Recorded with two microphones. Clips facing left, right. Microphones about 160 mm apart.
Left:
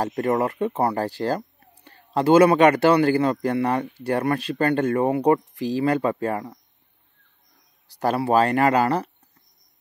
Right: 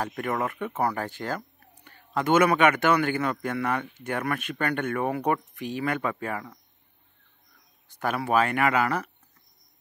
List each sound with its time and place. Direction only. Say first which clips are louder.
0.0 s speech: left 7 dB; 35° left (ahead or behind)
7.9 s speech: left 5 dB; 35° left (ahead or behind)